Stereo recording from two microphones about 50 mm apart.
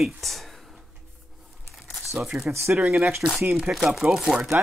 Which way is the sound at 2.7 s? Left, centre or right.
Right.